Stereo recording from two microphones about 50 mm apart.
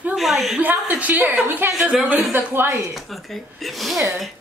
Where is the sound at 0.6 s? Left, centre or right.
Right.